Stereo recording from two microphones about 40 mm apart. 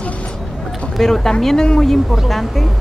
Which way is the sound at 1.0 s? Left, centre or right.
Centre.